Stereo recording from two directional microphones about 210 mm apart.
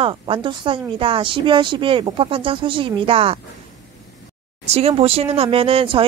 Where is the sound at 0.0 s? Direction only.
25° right (ahead or behind).